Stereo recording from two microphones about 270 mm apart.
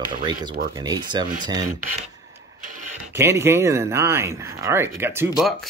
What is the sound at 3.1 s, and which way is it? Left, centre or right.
Speech, centre.